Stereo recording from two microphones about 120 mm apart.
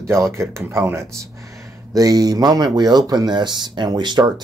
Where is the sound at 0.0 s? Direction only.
25° right (ahead or behind).